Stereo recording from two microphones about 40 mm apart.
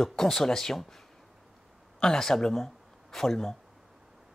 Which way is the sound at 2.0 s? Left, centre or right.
Centre.